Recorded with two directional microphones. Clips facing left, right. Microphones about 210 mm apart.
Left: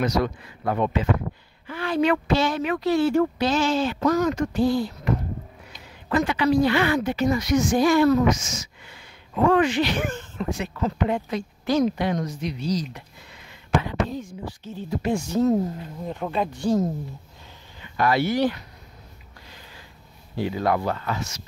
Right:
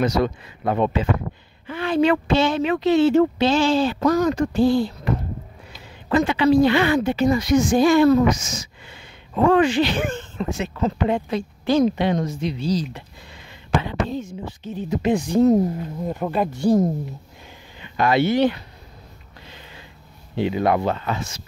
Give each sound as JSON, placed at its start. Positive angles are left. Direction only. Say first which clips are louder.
{"t": 0.0, "sound": "a woman's voice", "louder": "right 3 dB", "side_deg": -25}
{"t": 16.1, "sound": "speech", "louder": "right 3 dB", "side_deg": -5}
{"t": 17.9, "sound": "a woman's voice", "louder": "right 3 dB", "side_deg": -25}
{"t": 19.4, "sound": "a sound", "louder": "right 4 dB", "side_deg": -25}
{"t": 20.3, "sound": "a woman's voice", "louder": "right 4 dB", "side_deg": -20}